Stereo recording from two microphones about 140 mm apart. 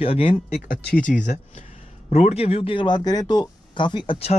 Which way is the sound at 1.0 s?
65° left (ahead or behind).